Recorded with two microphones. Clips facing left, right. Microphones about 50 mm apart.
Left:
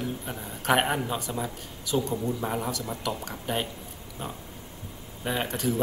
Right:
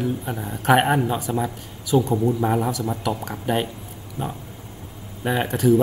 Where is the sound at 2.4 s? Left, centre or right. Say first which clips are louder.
Right 8 dB; right.